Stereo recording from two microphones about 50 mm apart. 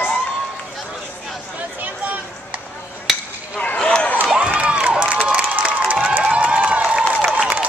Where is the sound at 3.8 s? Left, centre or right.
Centre.